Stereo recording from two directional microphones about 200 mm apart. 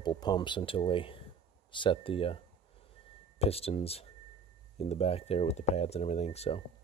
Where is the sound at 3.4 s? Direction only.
30° left (ahead or behind).